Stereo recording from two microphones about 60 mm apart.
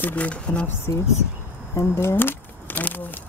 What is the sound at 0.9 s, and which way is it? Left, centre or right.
Speech, left.